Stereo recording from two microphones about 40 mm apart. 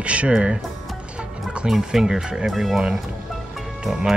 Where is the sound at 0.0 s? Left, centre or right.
Right.